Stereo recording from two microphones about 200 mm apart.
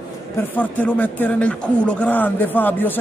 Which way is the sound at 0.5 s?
10° left (ahead or behind).